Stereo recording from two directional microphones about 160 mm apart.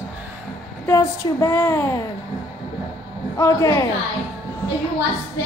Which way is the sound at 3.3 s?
20° left (ahead or behind).